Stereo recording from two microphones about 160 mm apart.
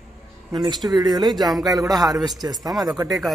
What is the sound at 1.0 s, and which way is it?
Speech, 25° right (ahead or behind).